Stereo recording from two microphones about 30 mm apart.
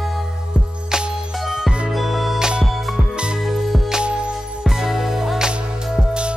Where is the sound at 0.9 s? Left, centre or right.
Right.